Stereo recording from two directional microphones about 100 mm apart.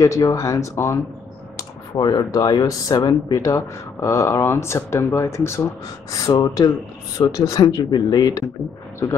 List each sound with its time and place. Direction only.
0.0 s speech: 30° left (ahead or behind)
6.1 s speech: 35° left (ahead or behind)